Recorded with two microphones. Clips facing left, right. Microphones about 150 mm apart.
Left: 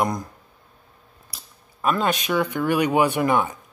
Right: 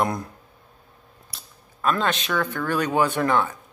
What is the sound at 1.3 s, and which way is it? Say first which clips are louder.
Speech: even; 10° left (ahead or behind).